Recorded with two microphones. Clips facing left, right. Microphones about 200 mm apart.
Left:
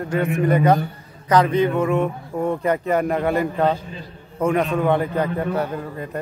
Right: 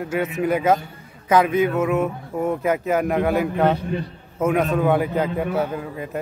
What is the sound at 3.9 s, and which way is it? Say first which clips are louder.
Speech: right 10 dB; 65° right (ahead or behind).